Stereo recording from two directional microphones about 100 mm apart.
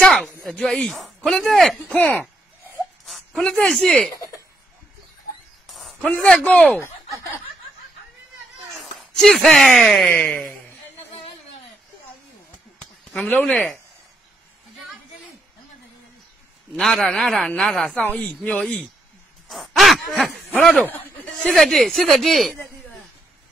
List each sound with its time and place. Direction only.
0.0 s a sound: 5° left (ahead or behind)
0.4 s speech: 5° left (ahead or behind)
2.0 s a man's voice: 15° left (ahead or behind)
3.1 s speech: 5° left (ahead or behind)
5.7 s a sound: centre (ahead or behind)
5.9 s a man's voice: 10° left (ahead or behind)
8.9 s a sound: 5° left (ahead or behind)
9.6 s speech: centre (ahead or behind)
10.0 s a man's voice: 15° left (ahead or behind)
13.1 s a man's voice: 15° left (ahead or behind)
16.7 s a man's voice: 5° left (ahead or behind)
19.4 s a sound: centre (ahead or behind)
21.4 s speech: 5° left (ahead or behind)